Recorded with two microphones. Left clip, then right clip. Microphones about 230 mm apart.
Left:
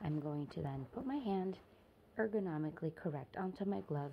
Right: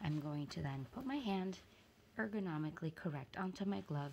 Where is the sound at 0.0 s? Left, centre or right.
Right.